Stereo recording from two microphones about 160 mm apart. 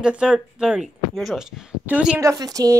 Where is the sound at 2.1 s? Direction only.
20° right (ahead or behind).